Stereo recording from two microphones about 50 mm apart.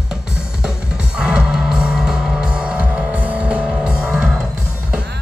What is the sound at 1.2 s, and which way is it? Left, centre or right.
Music, centre.